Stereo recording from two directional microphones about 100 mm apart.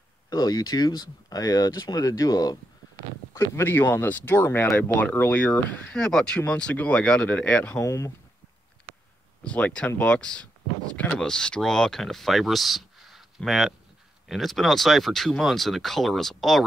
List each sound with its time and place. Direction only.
0.3 s speech: 40° left (ahead or behind)
3.3 s speech: 25° left (ahead or behind)
7.7 s speech: 30° left (ahead or behind)
9.4 s speech: 10° left (ahead or behind)